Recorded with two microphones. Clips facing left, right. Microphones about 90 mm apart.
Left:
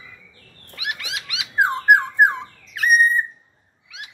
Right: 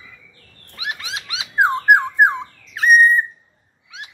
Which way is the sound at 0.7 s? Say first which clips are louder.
Right 1 dB; 30° right (ahead or behind).